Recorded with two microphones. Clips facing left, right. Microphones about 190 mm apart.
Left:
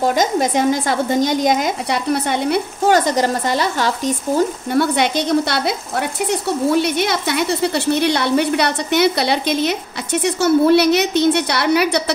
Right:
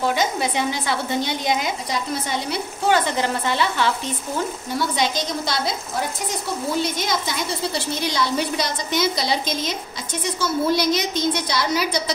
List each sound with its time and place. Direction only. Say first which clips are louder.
0.0 s speech: left 5 dB; 45° left (ahead or behind)
1.9 s speech: left 7 dB; 65° left (ahead or behind); by 4.1 s 40° left (ahead or behind)
4.6 s speech: left 6 dB; 60° left (ahead or behind)